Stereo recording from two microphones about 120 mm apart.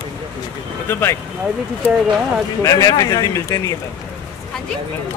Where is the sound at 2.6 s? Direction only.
30° left (ahead or behind).